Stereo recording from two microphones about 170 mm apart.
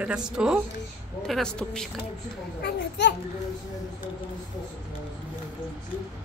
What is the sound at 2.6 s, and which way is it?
Speech, 85° left.